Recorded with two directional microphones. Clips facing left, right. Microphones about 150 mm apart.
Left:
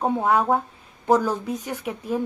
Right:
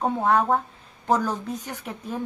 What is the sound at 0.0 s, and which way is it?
Speech, 10° left (ahead or behind).